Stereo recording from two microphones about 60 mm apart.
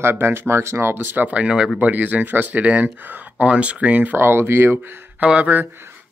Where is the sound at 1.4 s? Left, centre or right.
Centre.